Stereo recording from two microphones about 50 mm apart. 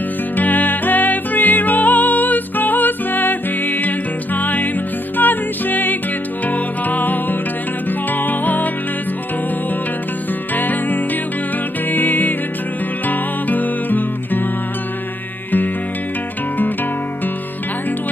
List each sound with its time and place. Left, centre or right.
0.4 s music: left
10.5 s music: left